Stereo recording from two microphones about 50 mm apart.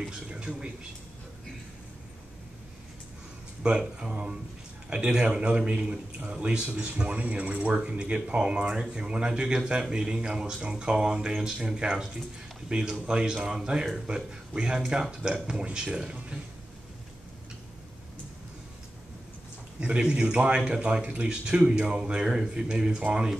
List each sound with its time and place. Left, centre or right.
0.0 s speech: centre
3.6 s a man's voice: centre
19.8 s a man's voice: centre